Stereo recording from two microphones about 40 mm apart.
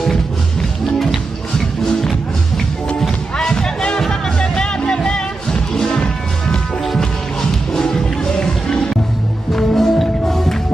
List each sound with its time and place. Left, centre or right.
0.0 s music: centre
7.8 s music: centre
9.5 s music: centre